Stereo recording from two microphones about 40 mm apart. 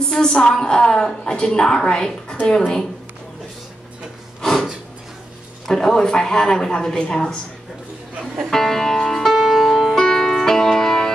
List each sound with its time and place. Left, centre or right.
0.1 s speech: centre
4.4 s snort: centre
5.7 s speech: centre
8.5 s music: centre